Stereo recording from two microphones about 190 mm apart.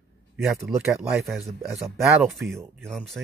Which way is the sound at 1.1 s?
Centre (ahead or behind).